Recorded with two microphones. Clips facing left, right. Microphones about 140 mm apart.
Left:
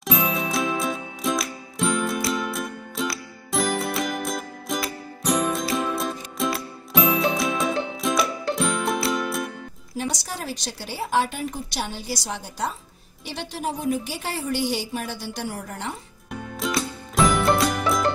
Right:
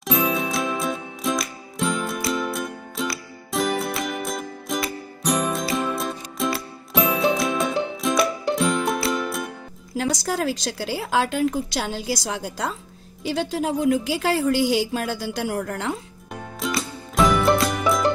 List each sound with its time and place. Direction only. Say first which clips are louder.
0.0 s music: right 2 dB; centre (ahead or behind)
9.9 s a woman's voice: right 6 dB; 90° right
16.5 s music: left 1 dB; centre (ahead or behind)